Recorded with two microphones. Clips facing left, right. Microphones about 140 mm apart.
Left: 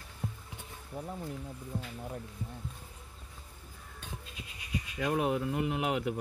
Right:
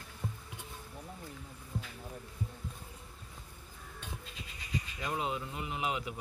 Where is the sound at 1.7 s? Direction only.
55° left (ahead or behind).